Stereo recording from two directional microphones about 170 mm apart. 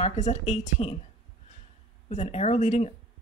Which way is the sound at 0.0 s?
45° left (ahead or behind).